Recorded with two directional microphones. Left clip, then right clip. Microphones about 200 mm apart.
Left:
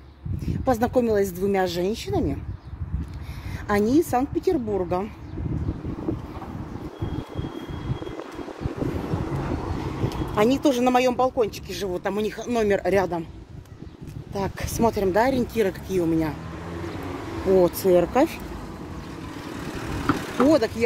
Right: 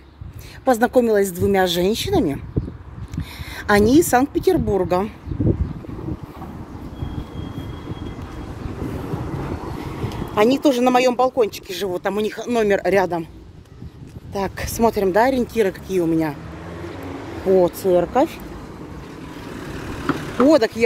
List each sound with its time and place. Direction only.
0.5 s speech: 15° right (ahead or behind)
3.5 s speech: 20° right (ahead or behind)
10.0 s speech: 25° right (ahead or behind)
14.3 s speech: 30° right (ahead or behind)
17.6 s speech: centre (ahead or behind)
20.1 s vehicle: 30° right (ahead or behind)
20.4 s speech: 35° right (ahead or behind)